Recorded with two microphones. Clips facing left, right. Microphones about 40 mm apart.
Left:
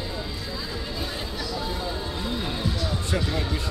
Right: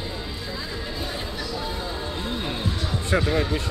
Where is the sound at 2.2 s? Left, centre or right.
Right.